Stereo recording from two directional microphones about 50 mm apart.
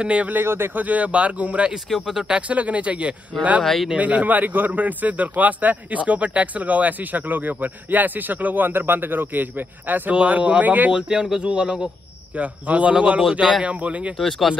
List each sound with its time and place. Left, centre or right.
0.0 s speech: right
0.3 s speech: right
0.8 s speech: right
2.0 s speech: centre
2.3 s speech: right
3.6 s speech: centre
3.9 s a man's voice: right
10.1 s speech: right
10.9 s speech: centre
14.1 s speech: centre